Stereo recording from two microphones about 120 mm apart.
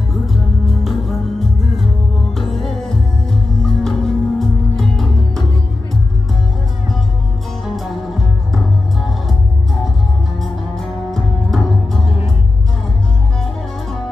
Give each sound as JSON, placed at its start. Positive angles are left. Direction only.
{"t": 0.3, "sound": "music", "side_deg": 0}
{"t": 7.6, "sound": "music", "side_deg": 0}
{"t": 10.4, "sound": "music", "side_deg": 5}